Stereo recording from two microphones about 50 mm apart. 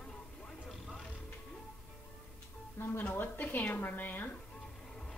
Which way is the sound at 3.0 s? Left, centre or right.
Left.